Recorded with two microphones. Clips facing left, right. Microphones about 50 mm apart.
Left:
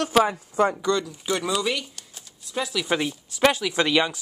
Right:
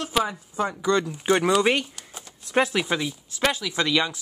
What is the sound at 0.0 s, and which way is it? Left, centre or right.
Speech, left.